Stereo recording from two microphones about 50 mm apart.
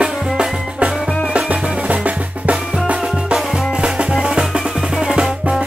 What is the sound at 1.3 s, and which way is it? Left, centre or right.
Music, right.